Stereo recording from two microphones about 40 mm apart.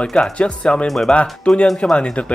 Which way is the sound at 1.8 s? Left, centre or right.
Left.